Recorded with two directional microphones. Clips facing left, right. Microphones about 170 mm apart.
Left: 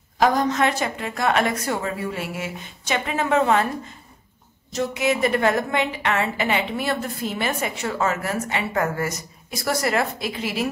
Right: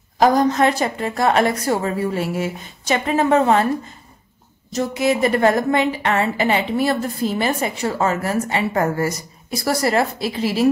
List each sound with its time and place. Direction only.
0.2 s a woman's voice: 35° right (ahead or behind)
4.7 s a woman's voice: 35° right (ahead or behind)